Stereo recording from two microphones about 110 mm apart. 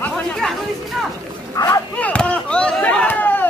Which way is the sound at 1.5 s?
30° left (ahead or behind).